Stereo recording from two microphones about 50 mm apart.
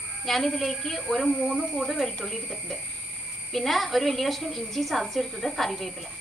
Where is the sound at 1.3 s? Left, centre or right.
Centre.